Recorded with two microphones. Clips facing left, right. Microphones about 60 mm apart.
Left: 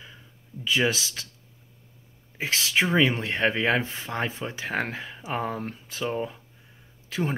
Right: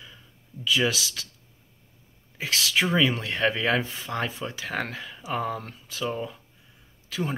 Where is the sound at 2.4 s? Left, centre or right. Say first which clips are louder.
Left 1 dB; left.